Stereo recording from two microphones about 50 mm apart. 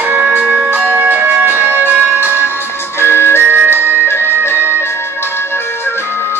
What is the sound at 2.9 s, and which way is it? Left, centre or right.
Music, left.